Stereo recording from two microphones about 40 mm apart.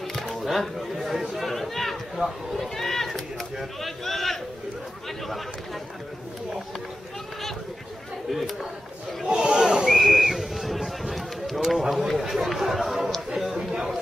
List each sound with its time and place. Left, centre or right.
0.1 s music: centre
1.0 s chatter: centre
2.1 s speech: centre
2.7 s run: centre
3.8 s speech: centre
8.3 s speech: centre
9.3 s snake: centre
9.8 s a sound: centre
12.2 s speech: centre
13.6 s chatter: centre